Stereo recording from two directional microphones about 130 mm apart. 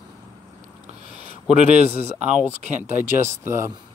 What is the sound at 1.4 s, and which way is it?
Speech, 60° right (ahead or behind).